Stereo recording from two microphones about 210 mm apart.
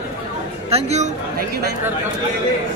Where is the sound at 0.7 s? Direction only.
30° right (ahead or behind).